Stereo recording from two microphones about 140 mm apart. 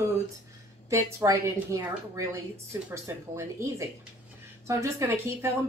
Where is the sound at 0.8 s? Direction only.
20° right (ahead or behind).